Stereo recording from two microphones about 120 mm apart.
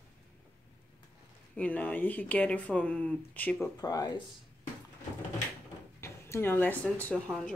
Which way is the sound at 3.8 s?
30° left (ahead or behind).